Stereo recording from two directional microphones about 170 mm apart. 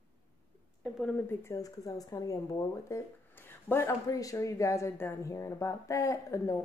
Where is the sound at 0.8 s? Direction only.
Centre (ahead or behind).